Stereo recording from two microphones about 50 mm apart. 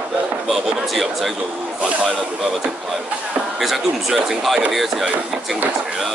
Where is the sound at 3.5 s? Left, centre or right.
Centre.